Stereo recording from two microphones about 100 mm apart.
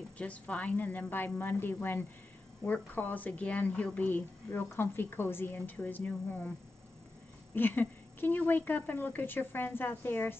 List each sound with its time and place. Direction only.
0.2 s a woman's voice: 15° left (ahead or behind)
7.5 s a woman's voice: 20° left (ahead or behind)